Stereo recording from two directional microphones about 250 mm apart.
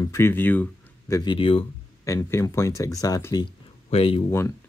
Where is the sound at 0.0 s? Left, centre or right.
Centre.